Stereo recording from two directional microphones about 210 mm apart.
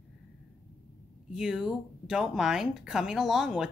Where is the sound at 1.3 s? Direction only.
5° right (ahead or behind).